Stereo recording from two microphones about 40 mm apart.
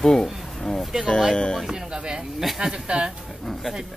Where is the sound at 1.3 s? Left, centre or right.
Centre.